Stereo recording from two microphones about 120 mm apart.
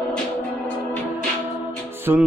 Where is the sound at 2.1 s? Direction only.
25° right (ahead or behind).